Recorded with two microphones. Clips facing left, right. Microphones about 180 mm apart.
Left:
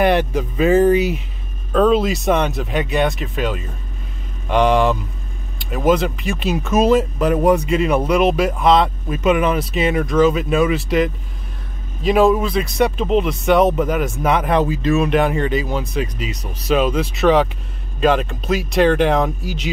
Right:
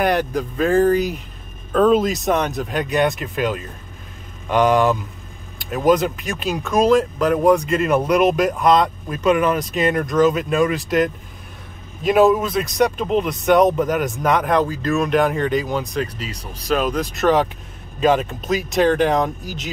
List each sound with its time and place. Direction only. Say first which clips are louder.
0.0 s speech: left 3 dB; 5° left (ahead or behind)
12.1 s speech: even; centre (ahead or behind)
19.4 s speech: left 5 dB; 45° right (ahead or behind)